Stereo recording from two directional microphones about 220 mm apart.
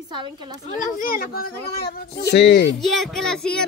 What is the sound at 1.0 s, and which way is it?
Speech, 40° left (ahead or behind).